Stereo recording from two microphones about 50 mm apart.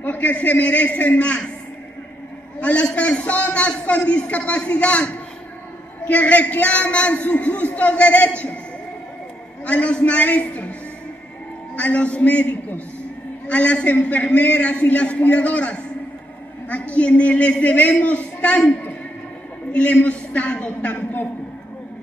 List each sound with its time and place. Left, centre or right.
0.0 s a man's voice: left
2.6 s a man's voice: left
9.7 s a man's voice: left
11.7 s a man's voice: left
19.7 s a man's voice: left